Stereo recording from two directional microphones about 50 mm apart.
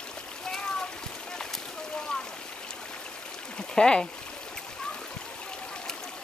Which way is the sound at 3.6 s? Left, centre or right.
Centre.